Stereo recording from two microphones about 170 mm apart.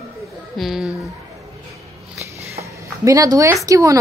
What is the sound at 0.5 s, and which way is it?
Speech, centre (ahead or behind).